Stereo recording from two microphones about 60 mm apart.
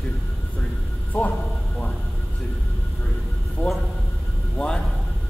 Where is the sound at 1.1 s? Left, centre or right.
Centre.